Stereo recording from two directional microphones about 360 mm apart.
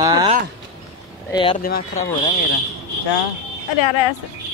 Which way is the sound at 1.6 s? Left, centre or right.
Left.